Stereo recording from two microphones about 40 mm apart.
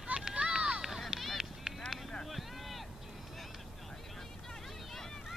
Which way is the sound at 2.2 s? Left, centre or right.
Centre.